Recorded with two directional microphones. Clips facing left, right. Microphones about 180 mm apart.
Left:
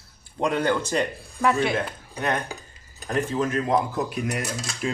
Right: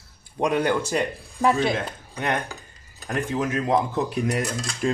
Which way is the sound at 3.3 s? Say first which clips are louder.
Right 2 dB; 15° right (ahead or behind).